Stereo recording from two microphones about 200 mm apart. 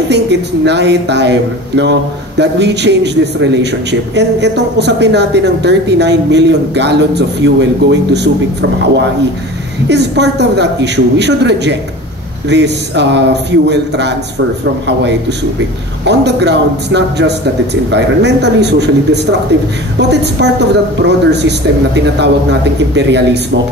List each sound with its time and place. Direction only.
0.1 s a woman's voice: 60° right (ahead or behind)
9.8 s a woman's voice: 60° right (ahead or behind)
16.1 s a woman's voice: 60° right (ahead or behind)